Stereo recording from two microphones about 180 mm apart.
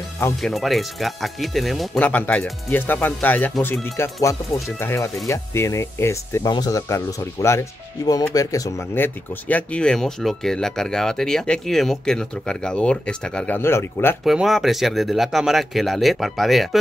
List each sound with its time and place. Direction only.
0.4 s speech: centre (ahead or behind)
14.2 s speech: centre (ahead or behind)